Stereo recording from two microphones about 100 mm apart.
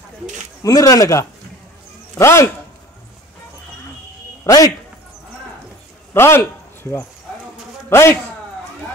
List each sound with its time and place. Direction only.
0.7 s a man's voice: 35° left (ahead or behind)
4.5 s speech: 35° left (ahead or behind)
6.1 s a man's voice: 25° left (ahead or behind)